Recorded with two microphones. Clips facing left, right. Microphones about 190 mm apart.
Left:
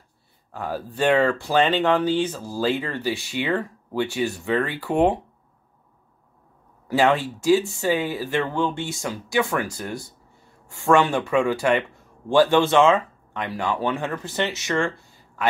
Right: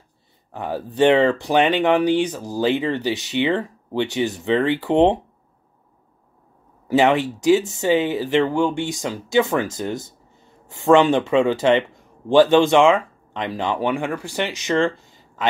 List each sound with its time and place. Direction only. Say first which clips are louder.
0.5 s speech: right 2 dB; 20° right (ahead or behind)
6.9 s speech: right 3 dB; 15° right (ahead or behind)